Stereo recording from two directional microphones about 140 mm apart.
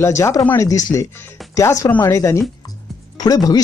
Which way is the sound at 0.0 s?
20° left (ahead or behind).